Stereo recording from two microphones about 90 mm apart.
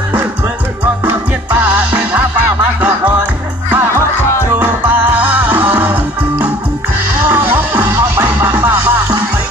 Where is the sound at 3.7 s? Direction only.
25° right (ahead or behind).